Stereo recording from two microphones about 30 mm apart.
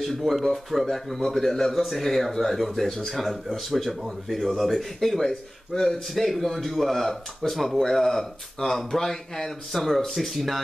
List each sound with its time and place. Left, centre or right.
0.2 s speech: centre
3.1 s speech: centre
5.3 s speech: centre
6.1 s speech: centre